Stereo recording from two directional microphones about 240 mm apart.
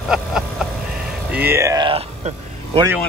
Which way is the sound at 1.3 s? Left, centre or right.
Centre.